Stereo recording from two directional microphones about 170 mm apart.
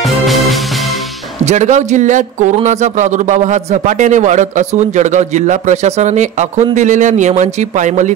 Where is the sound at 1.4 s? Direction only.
45° right (ahead or behind).